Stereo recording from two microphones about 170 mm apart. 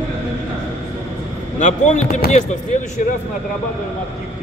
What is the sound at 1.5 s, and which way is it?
Speech, 45° left (ahead or behind).